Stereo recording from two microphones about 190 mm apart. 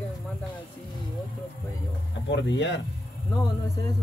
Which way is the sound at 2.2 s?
70° left (ahead or behind).